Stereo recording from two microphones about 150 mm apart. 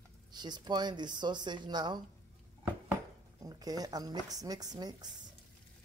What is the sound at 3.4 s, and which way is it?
Speech, 25° right (ahead or behind).